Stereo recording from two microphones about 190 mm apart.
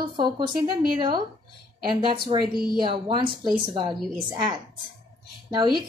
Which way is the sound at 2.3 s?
30° right (ahead or behind).